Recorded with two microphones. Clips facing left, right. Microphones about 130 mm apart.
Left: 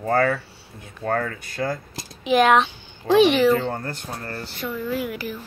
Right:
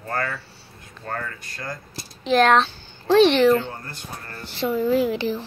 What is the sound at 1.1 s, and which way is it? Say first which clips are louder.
Speech: left 7 dB; 60° left (ahead or behind).